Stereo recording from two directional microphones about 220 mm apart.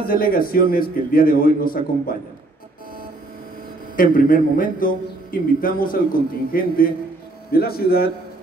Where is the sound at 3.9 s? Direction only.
40° left (ahead or behind).